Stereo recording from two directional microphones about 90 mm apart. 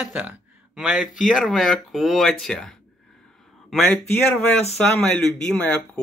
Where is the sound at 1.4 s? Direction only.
Centre (ahead or behind).